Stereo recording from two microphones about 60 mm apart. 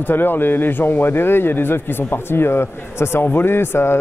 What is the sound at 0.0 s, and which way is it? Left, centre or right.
A man's voice, left.